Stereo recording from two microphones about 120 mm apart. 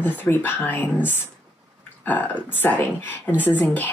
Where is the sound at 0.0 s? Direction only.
15° left (ahead or behind).